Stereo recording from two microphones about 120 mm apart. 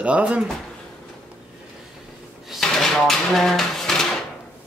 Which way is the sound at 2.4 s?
Centre (ahead or behind).